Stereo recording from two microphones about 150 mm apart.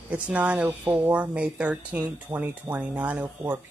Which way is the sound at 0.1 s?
10° right (ahead or behind).